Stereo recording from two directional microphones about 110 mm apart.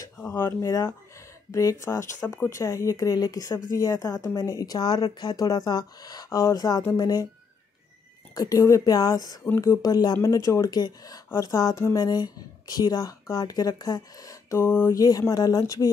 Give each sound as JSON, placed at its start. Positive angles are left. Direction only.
{"t": 0.2, "sound": "speech", "side_deg": 25}
{"t": 8.4, "sound": "speech", "side_deg": 30}
{"t": 9.4, "sound": "speech", "side_deg": 25}
{"t": 9.8, "sound": "speech", "side_deg": 35}
{"t": 15.0, "sound": "speech", "side_deg": 35}